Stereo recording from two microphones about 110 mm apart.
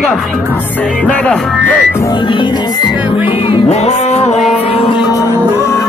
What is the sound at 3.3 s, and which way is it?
Music, 55° left (ahead or behind).